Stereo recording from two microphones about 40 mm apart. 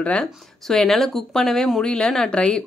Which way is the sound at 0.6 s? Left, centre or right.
Centre.